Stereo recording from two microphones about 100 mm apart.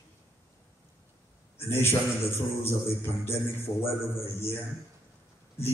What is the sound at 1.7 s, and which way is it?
A man's voice, 25° left (ahead or behind).